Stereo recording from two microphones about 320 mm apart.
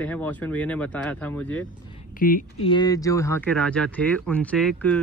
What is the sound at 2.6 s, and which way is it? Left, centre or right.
Speech, centre.